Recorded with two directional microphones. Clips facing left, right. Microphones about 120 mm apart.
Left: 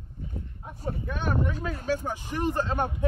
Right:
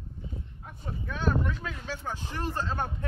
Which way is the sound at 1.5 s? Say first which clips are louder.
Left 4 dB; 40° left (ahead or behind).